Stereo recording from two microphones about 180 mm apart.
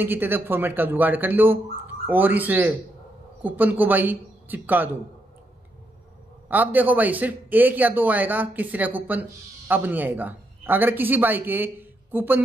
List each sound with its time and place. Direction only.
0.0 s speech: 10° right (ahead or behind)
6.5 s speech: 10° right (ahead or behind)